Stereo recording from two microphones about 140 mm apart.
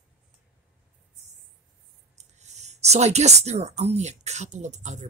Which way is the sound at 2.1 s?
55° right (ahead or behind).